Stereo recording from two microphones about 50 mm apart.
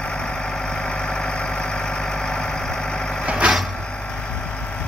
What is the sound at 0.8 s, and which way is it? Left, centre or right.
Engine, centre.